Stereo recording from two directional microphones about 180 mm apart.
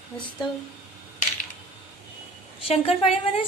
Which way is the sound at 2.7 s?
35° left (ahead or behind).